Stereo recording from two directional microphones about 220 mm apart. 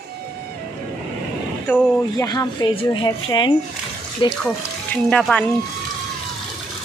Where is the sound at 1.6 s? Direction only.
5° left (ahead or behind).